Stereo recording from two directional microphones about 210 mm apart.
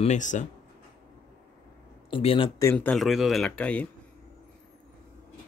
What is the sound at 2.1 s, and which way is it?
Speech, 25° left (ahead or behind).